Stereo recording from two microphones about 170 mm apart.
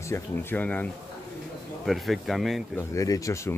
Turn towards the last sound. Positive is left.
turn(degrees=15)  # may be behind; listen again after turning